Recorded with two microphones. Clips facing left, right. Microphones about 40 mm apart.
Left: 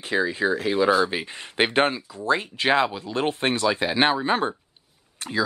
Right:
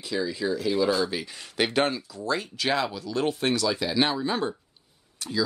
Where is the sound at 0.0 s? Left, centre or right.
Left.